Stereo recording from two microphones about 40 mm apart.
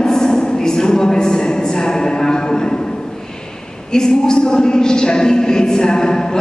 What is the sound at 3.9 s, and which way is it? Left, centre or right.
A woman's voice, centre.